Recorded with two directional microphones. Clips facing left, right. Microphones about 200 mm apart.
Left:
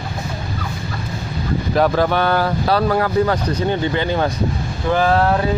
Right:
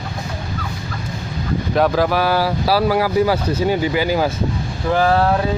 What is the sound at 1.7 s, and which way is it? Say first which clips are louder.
Speech: even; centre (ahead or behind).